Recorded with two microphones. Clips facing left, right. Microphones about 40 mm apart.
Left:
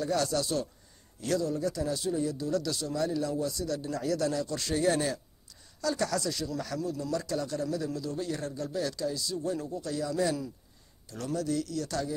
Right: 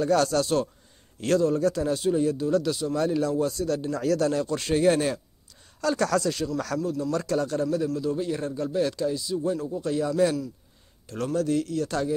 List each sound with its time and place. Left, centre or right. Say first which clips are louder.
0.0 s a man's voice: right 7 dB; right
2.4 s speech: right 6 dB; right
2.9 s speech: right 5 dB; right
7.7 s a man's voice: right 7 dB; right